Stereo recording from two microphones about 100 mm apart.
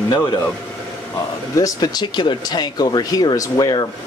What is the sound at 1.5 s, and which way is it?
Speech, 40° left (ahead or behind).